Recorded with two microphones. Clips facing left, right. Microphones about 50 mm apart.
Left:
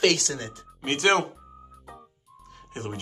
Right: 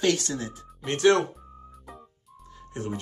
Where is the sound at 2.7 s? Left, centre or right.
Left.